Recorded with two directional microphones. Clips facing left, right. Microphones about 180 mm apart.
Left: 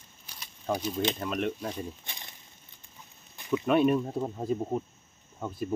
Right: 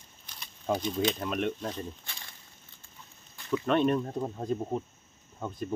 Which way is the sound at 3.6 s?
5° left (ahead or behind).